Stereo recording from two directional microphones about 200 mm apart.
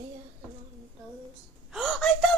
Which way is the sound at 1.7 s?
Centre (ahead or behind).